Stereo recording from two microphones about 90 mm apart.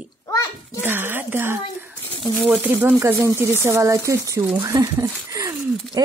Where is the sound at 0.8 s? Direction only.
25° right (ahead or behind); by 4.9 s 40° right (ahead or behind).